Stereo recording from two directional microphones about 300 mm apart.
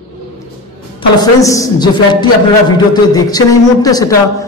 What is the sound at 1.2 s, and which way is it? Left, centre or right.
A man's voice, centre.